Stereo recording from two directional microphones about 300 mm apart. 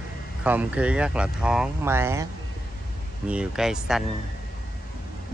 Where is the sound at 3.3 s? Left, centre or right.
Centre.